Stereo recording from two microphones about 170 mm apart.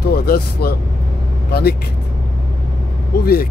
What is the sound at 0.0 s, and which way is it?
Speech, 70° left (ahead or behind).